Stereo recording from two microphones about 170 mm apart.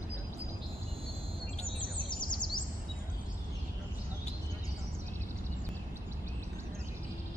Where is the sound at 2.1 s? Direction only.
25° left (ahead or behind).